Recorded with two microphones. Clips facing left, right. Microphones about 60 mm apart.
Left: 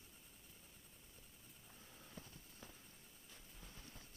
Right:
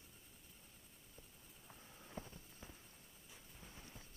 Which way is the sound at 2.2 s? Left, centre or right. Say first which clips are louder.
Right 7 dB; right.